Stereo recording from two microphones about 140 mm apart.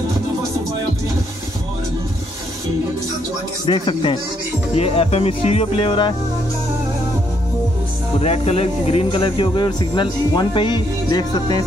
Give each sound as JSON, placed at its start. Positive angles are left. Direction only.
{"t": 3.6, "sound": "speech", "side_deg": 35}
{"t": 8.2, "sound": "speech", "side_deg": 50}